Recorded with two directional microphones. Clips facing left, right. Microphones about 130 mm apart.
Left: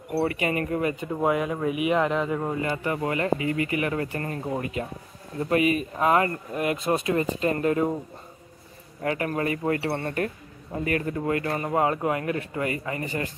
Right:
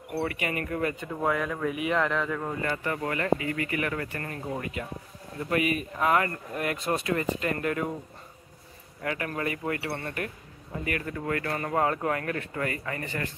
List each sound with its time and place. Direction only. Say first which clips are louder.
0.1 s speech: left 5 dB; 30° left (ahead or behind)
9.0 s speech: left 5 dB; 30° left (ahead or behind)